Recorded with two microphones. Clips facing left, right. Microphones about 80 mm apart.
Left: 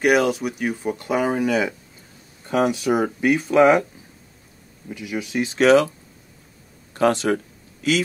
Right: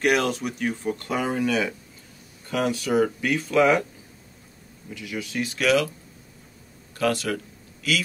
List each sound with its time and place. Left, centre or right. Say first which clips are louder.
0.0 s speech: left 4 dB; centre; by 3.8 s left
4.8 s speech: left 4 dB; left
6.9 s a sound: left 6 dB; left